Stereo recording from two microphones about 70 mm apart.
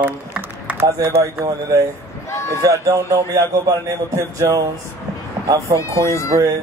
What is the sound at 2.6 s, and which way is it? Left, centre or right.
A man's voice, right.